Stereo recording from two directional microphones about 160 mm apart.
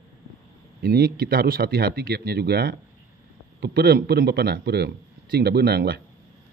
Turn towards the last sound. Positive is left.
turn(degrees=-85)